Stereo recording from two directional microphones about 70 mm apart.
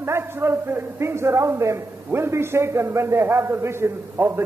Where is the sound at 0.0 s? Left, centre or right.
Right.